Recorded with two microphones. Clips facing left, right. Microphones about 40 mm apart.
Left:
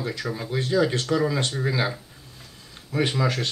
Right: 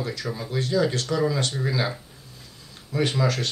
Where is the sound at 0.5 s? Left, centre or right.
Left.